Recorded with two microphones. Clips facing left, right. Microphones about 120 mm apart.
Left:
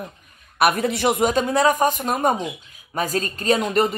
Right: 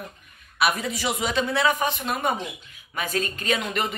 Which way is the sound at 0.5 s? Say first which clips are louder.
Left 6 dB; 55° left (ahead or behind).